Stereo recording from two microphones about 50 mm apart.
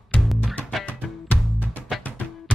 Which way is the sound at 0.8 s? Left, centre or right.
Left.